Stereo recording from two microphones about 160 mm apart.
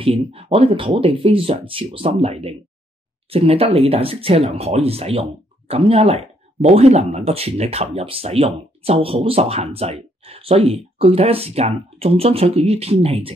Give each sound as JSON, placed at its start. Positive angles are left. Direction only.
{"t": 0.0, "sound": "speech", "side_deg": -35}